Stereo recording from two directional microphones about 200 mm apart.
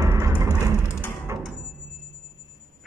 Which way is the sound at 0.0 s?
15° right (ahead or behind).